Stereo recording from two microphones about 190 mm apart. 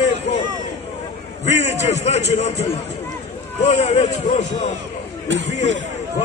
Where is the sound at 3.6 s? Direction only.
35° left (ahead or behind).